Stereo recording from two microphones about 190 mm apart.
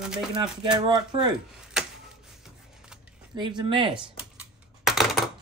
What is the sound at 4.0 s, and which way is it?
Computer keyboard, 5° right (ahead or behind).